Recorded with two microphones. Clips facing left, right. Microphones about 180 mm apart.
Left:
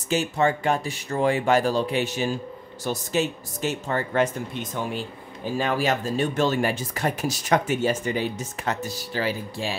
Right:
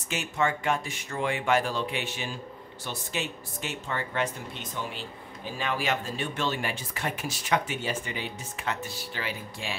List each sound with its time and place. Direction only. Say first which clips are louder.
0.1 s speech: left 6 dB; 35° left (ahead or behind)